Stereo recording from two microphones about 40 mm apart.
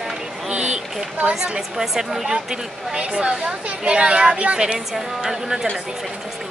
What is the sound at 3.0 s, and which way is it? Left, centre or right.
A woman's voice, right.